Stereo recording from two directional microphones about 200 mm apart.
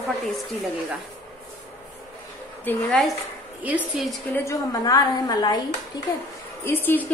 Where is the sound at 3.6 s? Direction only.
5° right (ahead or behind).